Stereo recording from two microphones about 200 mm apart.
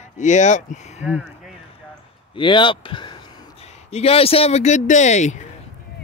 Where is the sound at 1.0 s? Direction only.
5° right (ahead or behind).